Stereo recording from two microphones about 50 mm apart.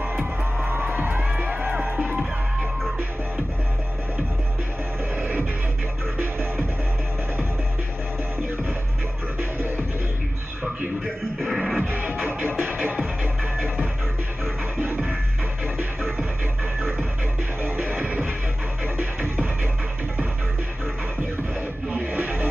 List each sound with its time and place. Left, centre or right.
0.7 s music: right
9.4 s music: right
11.4 s music: centre
11.8 s music: right
17.6 s music: right
21.9 s music: right